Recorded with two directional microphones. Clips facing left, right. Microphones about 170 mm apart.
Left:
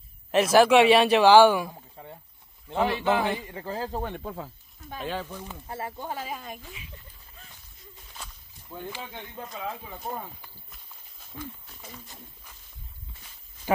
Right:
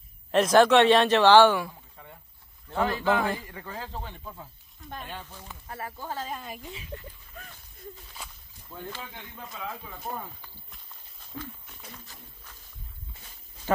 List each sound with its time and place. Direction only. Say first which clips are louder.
0.3 s a man's voice: left 1 dB; 5° left (ahead or behind)
2.0 s rowboat: left 6 dB; 30° left (ahead or behind)
2.7 s a man's voice: left 1 dB; 20° left (ahead or behind); by 4.0 s 35° left (ahead or behind)
4.0 s speech: left 8 dB; 65° left (ahead or behind)
4.7 s speech: left 1 dB; 5° left (ahead or behind)
5.5 s a man's voice: left 3 dB; 25° left (ahead or behind); by 6.6 s centre (ahead or behind)
6.9 s speech: right 10 dB; 65° right (ahead or behind)
8.7 s a man's voice: left 2 dB; 15° left (ahead or behind)